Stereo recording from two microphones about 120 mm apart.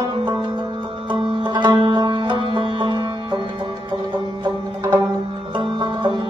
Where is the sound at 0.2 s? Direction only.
40° right (ahead or behind).